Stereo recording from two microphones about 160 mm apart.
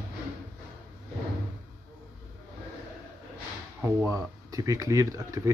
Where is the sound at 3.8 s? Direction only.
20° right (ahead or behind).